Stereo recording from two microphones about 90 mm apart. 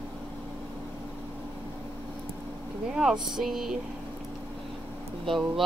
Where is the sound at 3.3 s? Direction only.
5° right (ahead or behind).